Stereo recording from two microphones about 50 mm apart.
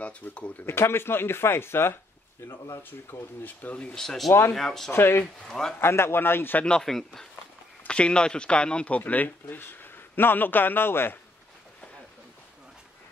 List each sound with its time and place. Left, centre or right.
0.2 s speech: left
0.7 s speech: left
3.9 s speech: centre
4.9 s speech: left
5.5 s speech: centre
5.8 s speech: left
6.6 s speech: centre
7.9 s speech: centre; by 11.1 s left